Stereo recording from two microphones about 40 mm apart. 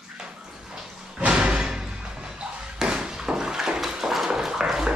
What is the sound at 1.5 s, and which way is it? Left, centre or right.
Slam, centre.